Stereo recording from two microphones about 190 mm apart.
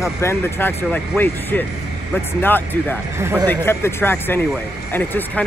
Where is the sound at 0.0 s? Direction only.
15° left (ahead or behind).